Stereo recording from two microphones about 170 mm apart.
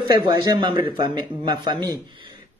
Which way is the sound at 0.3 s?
25° right (ahead or behind).